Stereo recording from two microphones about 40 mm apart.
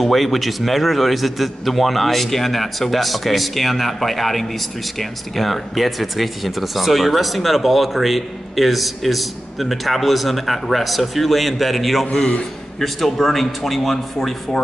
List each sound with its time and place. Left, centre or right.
0.0 s a man's voice: centre
12.1 s a man's voice: left
12.7 s a man's voice: centre